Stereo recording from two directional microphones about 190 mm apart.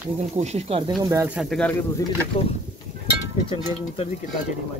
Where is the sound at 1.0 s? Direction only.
15° right (ahead or behind).